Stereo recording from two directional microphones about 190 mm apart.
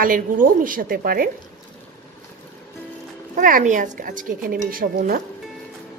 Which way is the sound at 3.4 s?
45° right (ahead or behind).